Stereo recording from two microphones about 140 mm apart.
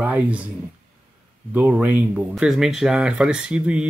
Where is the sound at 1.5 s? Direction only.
10° right (ahead or behind).